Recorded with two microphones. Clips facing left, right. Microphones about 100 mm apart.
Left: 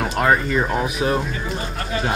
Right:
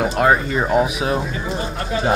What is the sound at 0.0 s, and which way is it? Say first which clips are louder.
Speech: right 2 dB; 5° right (ahead or behind).